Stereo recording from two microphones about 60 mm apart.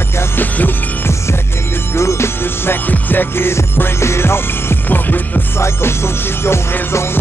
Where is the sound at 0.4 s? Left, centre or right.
Left.